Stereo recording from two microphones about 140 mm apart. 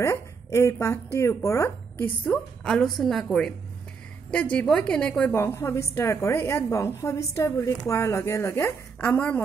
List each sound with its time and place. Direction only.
0.0 s a woman's voice: 20° left (ahead or behind)
2.3 s a woman's voice: 5° left (ahead or behind)
5.3 s a woman's voice: 20° left (ahead or behind)